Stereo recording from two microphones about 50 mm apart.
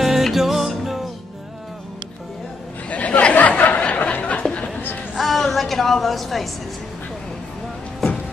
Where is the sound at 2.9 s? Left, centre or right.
Left.